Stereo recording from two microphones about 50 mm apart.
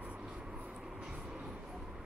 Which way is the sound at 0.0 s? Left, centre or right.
Right.